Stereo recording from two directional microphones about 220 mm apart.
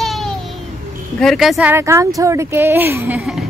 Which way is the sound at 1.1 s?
Centre (ahead or behind).